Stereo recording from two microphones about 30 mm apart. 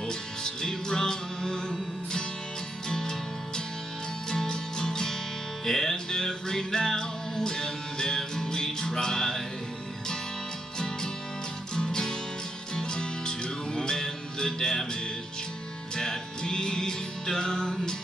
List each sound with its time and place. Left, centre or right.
0.1 s music: left
11.7 s music: left
16.0 s music: left